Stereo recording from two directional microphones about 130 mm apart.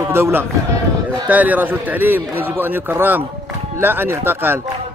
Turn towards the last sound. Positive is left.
turn(degrees=-15)  # may be behind; listen again after turning